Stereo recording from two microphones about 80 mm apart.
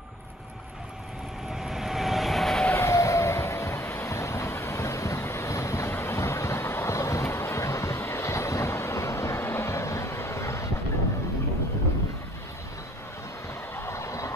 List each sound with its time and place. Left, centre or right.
1.5 s vehicle: centre
2.7 s vehicle: left
13.7 s vehicle: left